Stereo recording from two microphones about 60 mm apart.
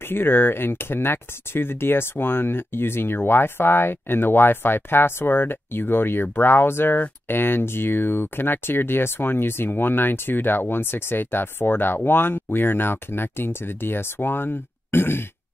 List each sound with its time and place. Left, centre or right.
0.1 s speech: left